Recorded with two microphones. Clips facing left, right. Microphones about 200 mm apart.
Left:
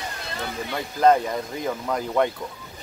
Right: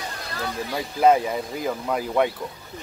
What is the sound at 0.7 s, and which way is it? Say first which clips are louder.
Speech: even; 5° right (ahead or behind).